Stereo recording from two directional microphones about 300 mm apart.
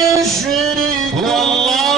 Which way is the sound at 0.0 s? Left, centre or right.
Centre.